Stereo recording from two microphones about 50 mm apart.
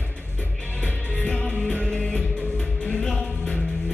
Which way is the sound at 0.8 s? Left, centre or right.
Left.